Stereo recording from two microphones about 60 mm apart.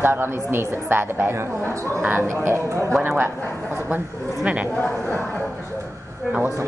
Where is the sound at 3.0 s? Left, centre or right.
Right.